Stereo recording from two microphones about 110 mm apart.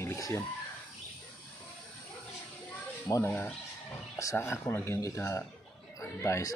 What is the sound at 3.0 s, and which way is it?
Speech, 25° left (ahead or behind).